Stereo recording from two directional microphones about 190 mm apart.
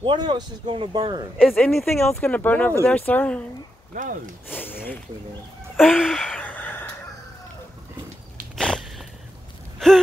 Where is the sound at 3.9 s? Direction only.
45° right (ahead or behind).